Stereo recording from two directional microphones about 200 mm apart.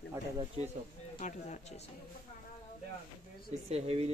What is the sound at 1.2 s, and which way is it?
Speech, 35° left (ahead or behind).